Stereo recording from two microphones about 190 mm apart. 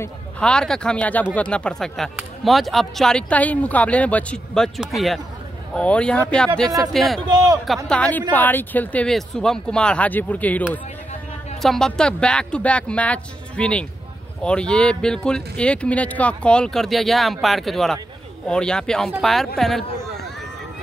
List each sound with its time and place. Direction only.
0.0 s speech: 5° left (ahead or behind)
7.2 s a man's voice: 15° right (ahead or behind)
7.6 s speech: centre (ahead or behind)
11.6 s speech: centre (ahead or behind)